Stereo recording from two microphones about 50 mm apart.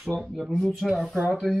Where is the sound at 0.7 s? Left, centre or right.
Centre.